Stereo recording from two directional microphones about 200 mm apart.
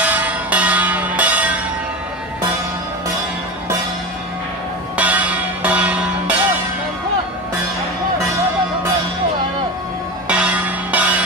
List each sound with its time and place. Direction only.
0.0 s bell: 5° right (ahead or behind)
4.9 s music: 5° right (ahead or behind)
10.2 s music: 5° right (ahead or behind)